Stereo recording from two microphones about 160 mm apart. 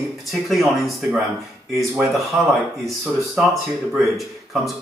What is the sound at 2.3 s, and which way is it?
Speech, 20° right (ahead or behind).